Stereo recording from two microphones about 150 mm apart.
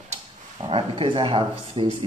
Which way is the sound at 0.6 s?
35° right (ahead or behind).